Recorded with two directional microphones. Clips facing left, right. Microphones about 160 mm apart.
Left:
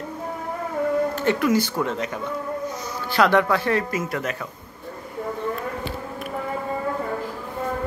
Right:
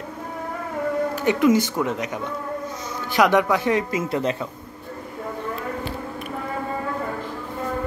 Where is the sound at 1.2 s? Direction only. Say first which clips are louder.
Right 6 dB; 20° right (ahead or behind).